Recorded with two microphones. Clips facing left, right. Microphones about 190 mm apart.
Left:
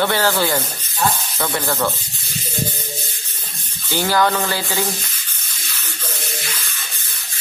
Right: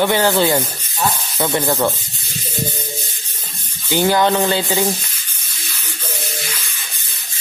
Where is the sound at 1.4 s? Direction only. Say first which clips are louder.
Right 4 dB; 20° right (ahead or behind).